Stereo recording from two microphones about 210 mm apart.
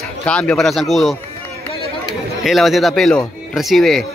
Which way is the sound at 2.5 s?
Centre (ahead or behind).